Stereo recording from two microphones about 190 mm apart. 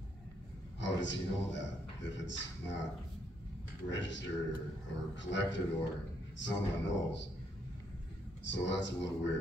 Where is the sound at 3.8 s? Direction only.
75° left (ahead or behind).